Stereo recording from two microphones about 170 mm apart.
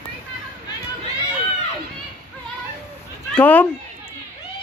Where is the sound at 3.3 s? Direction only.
10° left (ahead or behind).